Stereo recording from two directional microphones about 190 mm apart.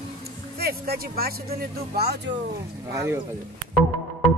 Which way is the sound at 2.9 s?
15° right (ahead or behind).